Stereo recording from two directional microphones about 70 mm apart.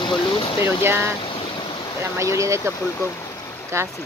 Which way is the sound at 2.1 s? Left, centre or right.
Right.